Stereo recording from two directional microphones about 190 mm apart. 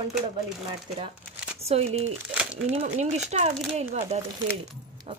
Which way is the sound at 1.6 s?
35° right (ahead or behind).